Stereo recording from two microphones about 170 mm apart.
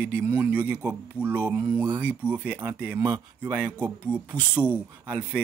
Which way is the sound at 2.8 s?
10° right (ahead or behind).